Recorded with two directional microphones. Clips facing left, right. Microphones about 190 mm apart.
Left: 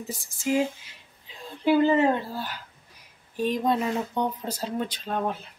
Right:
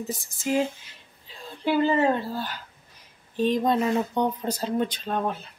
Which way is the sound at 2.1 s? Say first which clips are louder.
Right 2 dB; 10° left (ahead or behind).